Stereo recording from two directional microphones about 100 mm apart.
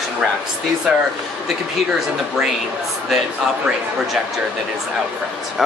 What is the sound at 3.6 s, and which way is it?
Speech, 5° right (ahead or behind).